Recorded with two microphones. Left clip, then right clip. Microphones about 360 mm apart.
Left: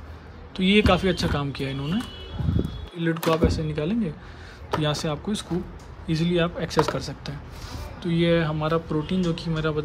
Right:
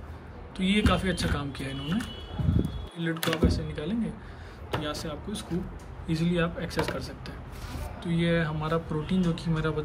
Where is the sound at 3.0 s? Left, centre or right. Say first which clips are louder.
Left 6 dB; centre.